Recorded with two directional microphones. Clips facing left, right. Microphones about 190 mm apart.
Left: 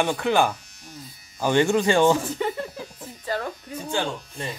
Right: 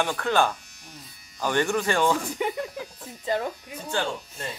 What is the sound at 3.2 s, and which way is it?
Electric shaver, 15° right (ahead or behind).